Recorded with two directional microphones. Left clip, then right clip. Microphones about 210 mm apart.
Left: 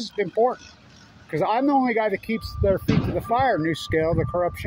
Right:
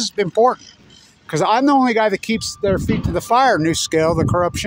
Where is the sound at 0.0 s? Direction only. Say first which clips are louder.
Right 7 dB; 50° right (ahead or behind).